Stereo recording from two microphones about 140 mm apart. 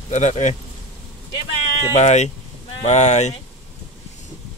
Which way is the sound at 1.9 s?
55° left (ahead or behind).